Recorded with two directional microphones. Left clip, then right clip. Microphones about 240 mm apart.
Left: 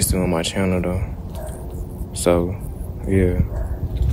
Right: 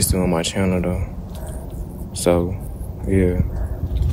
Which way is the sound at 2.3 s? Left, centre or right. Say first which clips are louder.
Even; centre.